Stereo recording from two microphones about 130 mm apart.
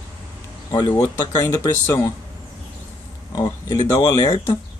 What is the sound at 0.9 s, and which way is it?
Speech, 15° left (ahead or behind).